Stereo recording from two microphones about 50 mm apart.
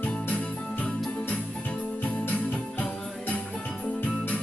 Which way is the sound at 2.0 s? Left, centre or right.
Left.